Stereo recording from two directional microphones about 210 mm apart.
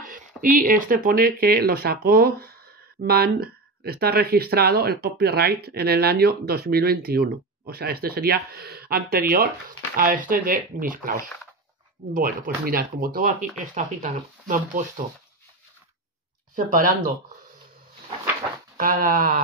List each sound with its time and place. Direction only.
0.4 s speech: 40° right (ahead or behind)
16.5 s speech: 40° right (ahead or behind)
18.8 s speech: 40° right (ahead or behind)